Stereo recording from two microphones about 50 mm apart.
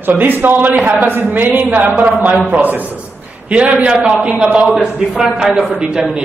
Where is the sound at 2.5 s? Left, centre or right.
Right.